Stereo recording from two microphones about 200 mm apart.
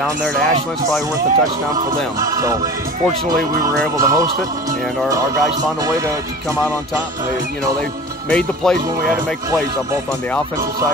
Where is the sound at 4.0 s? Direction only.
15° right (ahead or behind).